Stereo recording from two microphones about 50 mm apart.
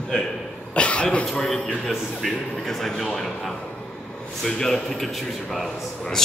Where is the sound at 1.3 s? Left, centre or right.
Centre.